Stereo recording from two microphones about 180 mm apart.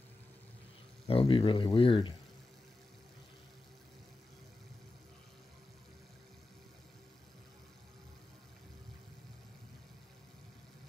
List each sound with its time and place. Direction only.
1.0 s speech: 30° left (ahead or behind)